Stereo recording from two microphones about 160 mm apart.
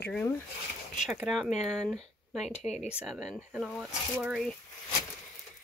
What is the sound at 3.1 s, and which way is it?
Speech, 5° left (ahead or behind).